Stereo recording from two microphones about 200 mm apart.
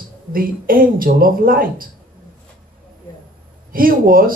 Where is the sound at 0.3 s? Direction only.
45° right (ahead or behind).